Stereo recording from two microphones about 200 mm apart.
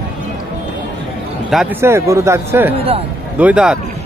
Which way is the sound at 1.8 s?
15° right (ahead or behind).